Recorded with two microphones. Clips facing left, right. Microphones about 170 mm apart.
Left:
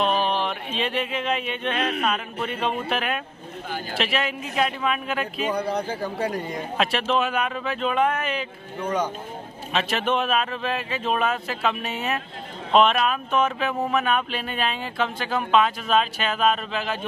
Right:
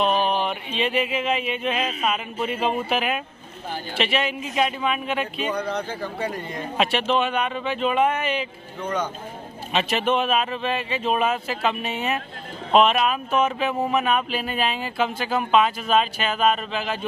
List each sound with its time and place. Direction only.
0.0 s a sound: centre (ahead or behind)
1.8 s speech: 65° left (ahead or behind)
2.0 s speech: 10° right (ahead or behind)
5.5 s speech: 10° left (ahead or behind)
6.8 s speech: centre (ahead or behind)
8.8 s speech: 10° left (ahead or behind)
9.7 s speech: centre (ahead or behind)